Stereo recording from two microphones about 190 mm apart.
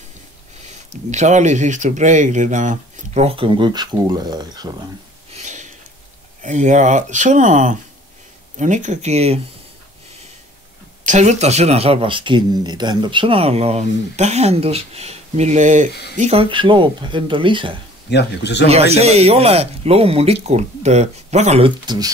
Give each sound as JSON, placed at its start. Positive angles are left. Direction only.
{"t": 0.7, "sound": "speech", "side_deg": -35}
{"t": 5.3, "sound": "a sound", "side_deg": -40}
{"t": 6.4, "sound": "speech", "side_deg": -40}
{"t": 11.1, "sound": "speech", "side_deg": -35}
{"t": 15.9, "sound": "speech", "side_deg": 60}
{"t": 16.2, "sound": "speech", "side_deg": -30}
{"t": 18.1, "sound": "speech", "side_deg": 65}
{"t": 18.7, "sound": "speech", "side_deg": -35}